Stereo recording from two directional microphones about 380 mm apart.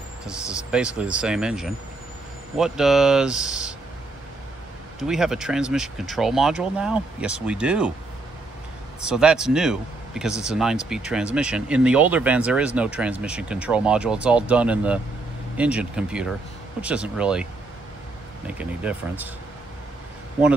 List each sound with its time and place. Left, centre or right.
0.3 s speech: centre
5.0 s speech: centre
9.0 s speech: centre
18.5 s speech: centre